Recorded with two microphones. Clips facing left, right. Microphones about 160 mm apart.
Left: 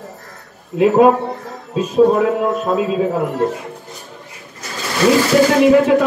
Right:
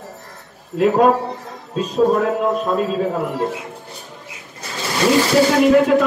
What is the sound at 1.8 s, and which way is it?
A man's voice, 5° left (ahead or behind).